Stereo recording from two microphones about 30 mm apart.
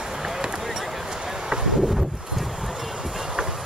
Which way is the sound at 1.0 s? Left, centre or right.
Centre.